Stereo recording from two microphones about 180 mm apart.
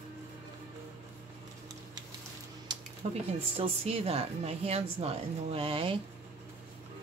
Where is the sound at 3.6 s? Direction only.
35° right (ahead or behind).